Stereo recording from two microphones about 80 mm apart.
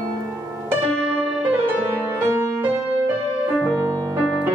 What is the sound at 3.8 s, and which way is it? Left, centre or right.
Music, right.